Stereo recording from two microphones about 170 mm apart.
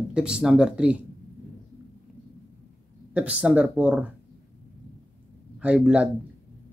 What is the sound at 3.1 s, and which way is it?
Speech, 10° right (ahead or behind).